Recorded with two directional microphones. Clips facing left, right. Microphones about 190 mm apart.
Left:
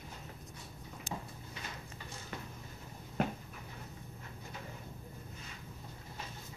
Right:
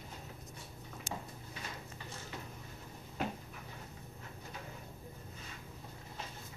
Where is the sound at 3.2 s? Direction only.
55° left (ahead or behind).